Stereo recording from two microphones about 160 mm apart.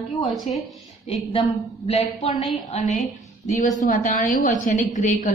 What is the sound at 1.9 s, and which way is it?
A woman's voice, 45° left (ahead or behind).